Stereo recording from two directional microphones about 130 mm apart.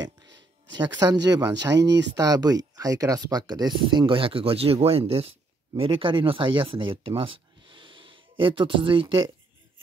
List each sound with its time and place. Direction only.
0.0 s speech: 30° right (ahead or behind)